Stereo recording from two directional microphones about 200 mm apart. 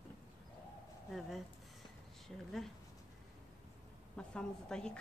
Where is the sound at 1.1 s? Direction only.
Centre (ahead or behind).